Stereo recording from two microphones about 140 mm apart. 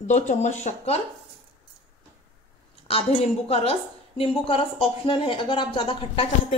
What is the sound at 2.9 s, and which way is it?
A woman's voice, 45° left (ahead or behind).